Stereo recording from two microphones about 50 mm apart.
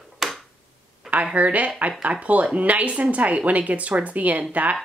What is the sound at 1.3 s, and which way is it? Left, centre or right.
A woman's voice, right.